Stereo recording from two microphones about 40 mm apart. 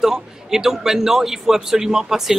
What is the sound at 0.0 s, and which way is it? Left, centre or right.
A man's voice, centre.